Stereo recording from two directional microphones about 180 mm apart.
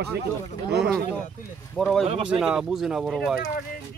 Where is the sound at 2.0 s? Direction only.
35° right (ahead or behind).